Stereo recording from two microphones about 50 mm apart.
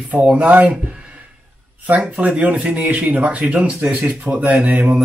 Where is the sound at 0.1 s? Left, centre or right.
Right.